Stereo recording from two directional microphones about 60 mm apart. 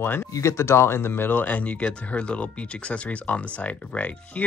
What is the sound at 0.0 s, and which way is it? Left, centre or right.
Speech, left.